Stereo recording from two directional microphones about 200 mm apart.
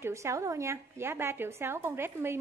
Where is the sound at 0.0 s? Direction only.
15° right (ahead or behind).